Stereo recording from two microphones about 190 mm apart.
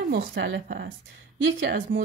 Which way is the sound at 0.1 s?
65° right (ahead or behind).